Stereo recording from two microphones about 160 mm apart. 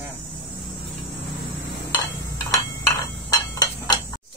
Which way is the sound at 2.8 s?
20° left (ahead or behind).